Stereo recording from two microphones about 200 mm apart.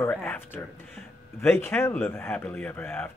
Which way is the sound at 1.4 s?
10° left (ahead or behind).